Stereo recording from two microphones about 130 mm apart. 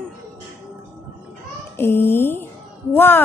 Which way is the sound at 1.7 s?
15° left (ahead or behind).